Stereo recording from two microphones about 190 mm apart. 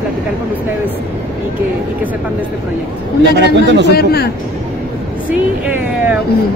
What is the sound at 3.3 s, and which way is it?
Speech, 65° right (ahead or behind).